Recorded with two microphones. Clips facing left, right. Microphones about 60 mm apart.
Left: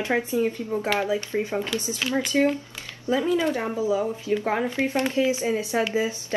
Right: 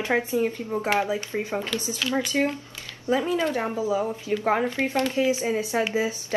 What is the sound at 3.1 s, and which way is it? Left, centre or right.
Speech, right.